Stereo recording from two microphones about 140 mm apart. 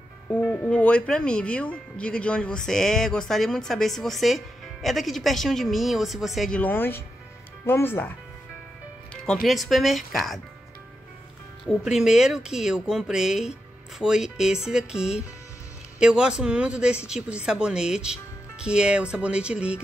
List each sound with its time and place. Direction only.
0.3 s speech: 10° left (ahead or behind)
6.6 s speech: 15° left (ahead or behind)
9.1 s speech: 5° left (ahead or behind)
11.6 s speech: 5° right (ahead or behind)